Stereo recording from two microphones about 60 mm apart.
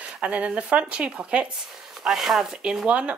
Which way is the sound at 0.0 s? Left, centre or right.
Right.